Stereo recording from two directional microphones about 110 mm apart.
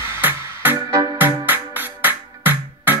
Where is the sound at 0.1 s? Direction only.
20° right (ahead or behind).